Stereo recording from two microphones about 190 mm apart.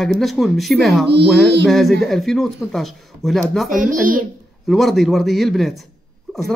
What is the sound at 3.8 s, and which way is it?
Speech, 45° right (ahead or behind).